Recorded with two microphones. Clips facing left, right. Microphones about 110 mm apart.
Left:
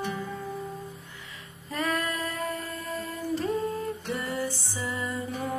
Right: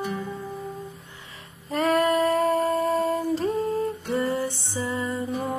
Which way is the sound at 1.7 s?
35° right (ahead or behind).